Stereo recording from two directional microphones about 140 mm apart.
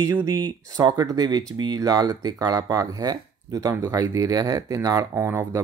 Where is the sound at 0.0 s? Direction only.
20° right (ahead or behind).